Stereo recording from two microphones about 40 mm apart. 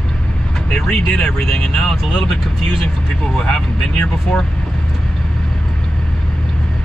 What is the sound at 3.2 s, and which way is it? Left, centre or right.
Speech, centre.